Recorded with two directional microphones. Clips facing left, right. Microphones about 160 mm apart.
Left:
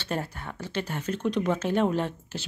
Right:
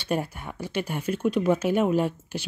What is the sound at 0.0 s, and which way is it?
Speech, 15° right (ahead or behind).